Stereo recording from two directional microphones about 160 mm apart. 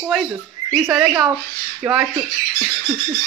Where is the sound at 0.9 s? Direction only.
5° right (ahead or behind).